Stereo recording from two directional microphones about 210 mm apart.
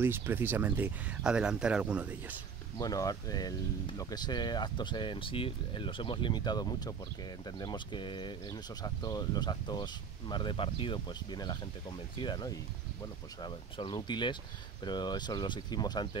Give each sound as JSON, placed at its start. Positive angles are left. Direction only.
{"t": 0.0, "sound": "speech", "side_deg": -10}
{"t": 2.8, "sound": "speech", "side_deg": 15}